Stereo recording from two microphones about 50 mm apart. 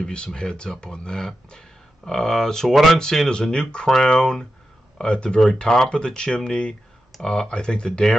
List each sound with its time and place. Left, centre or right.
0.0 s speech: centre
3.0 s speech: centre